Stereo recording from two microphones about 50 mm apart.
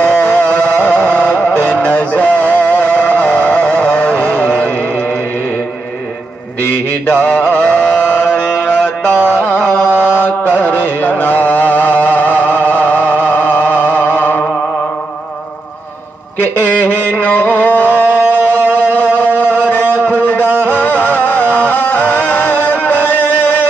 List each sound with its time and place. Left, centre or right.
0.0 s music: left
6.7 s mantra: left
8.5 s music: centre
9.1 s carnatic music: left
9.8 s mantra: left
10.6 s music: left
16.5 s a sound: left
18.3 s music: left
19.1 s a sound: left
20.6 s music: left